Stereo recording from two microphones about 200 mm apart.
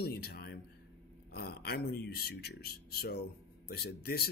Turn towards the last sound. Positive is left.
turn(degrees=50)  # may be behind; listen again after turning